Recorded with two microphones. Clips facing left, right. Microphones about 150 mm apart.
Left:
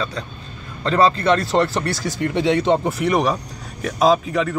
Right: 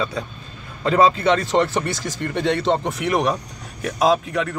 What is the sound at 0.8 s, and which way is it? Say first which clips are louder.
Speech: even; 10° right (ahead or behind).